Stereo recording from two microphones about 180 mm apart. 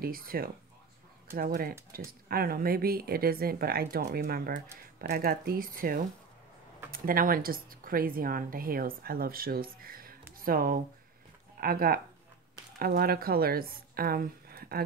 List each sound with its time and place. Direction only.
0.0 s speech: 55° right (ahead or behind)